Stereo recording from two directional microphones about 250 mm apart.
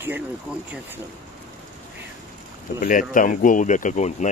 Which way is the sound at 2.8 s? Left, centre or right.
Left.